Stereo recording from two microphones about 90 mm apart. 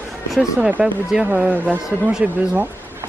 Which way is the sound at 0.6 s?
15° right (ahead or behind).